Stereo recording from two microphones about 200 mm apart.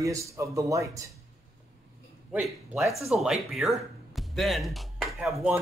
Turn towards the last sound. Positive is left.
turn(degrees=-5)  # may be behind; listen again after turning